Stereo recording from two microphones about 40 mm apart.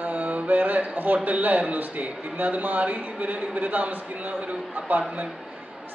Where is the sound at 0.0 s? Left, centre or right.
Right.